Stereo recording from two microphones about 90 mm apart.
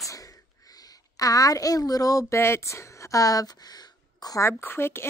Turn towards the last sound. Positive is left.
turn(degrees=25)  # may be behind; listen again after turning